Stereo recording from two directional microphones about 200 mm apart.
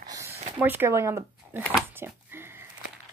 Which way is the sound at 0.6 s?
10° right (ahead or behind).